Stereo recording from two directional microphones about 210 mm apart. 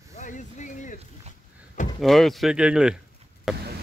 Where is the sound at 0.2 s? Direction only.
35° left (ahead or behind).